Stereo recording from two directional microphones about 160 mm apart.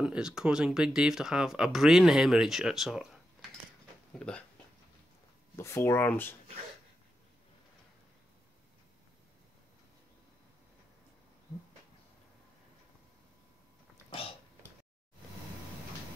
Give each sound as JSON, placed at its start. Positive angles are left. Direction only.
{"t": 0.0, "sound": "speech", "side_deg": -5}
{"t": 4.2, "sound": "speech", "side_deg": 5}
{"t": 5.6, "sound": "speech", "side_deg": 15}